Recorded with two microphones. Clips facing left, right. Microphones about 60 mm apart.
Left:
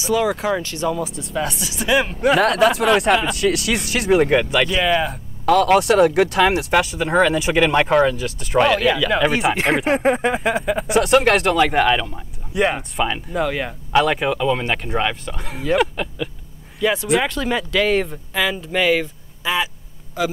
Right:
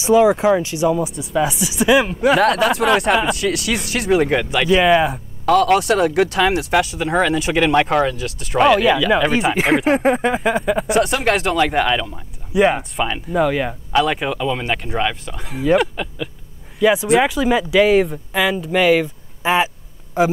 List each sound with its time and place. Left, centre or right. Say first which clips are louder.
0.0 s speech: right 6 dB; right
5.4 s speech: even; centre
19.4 s speech: right 5 dB; right